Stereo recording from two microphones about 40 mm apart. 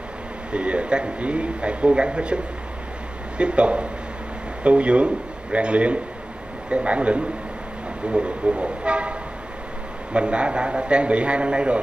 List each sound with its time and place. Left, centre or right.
0.5 s a man's voice: right
10.1 s a man's voice: right